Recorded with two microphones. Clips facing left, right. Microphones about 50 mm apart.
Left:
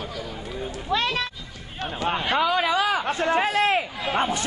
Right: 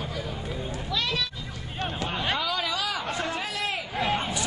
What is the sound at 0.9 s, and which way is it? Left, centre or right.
Speech, left.